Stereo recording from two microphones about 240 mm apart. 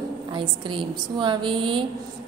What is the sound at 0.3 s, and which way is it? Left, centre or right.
A woman's voice, centre.